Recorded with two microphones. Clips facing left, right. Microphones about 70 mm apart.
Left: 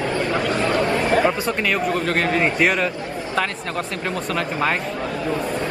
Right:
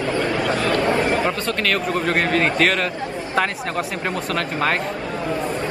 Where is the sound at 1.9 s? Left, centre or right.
Centre.